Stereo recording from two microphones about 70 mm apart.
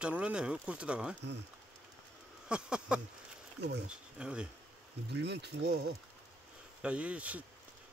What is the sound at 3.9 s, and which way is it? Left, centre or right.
Speech, centre.